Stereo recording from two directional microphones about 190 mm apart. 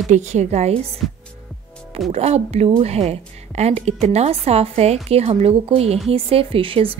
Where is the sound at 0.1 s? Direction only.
35° right (ahead or behind).